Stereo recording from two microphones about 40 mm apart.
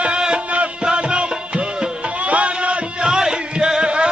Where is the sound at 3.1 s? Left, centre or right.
Centre.